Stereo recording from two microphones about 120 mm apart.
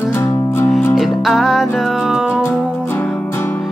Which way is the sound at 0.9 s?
Centre (ahead or behind).